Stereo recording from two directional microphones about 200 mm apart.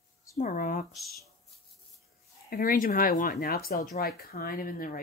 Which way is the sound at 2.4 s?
45° left (ahead or behind).